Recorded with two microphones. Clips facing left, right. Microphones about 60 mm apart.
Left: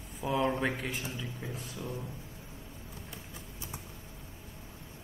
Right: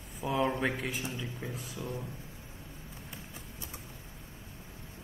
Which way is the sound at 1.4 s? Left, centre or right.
Right.